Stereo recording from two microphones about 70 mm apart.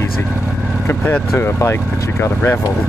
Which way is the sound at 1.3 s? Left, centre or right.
Left.